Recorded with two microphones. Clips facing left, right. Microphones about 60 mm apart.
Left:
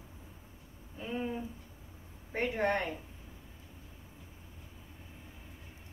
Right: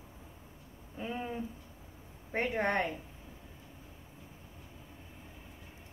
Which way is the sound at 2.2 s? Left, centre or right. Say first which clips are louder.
Even; right.